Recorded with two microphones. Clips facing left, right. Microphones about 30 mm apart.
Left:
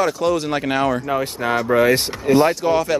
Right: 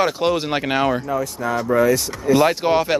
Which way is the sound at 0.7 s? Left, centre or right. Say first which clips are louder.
Even; centre.